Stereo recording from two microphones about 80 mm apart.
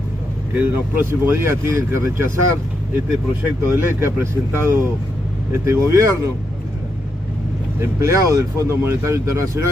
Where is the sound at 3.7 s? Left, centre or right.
Right.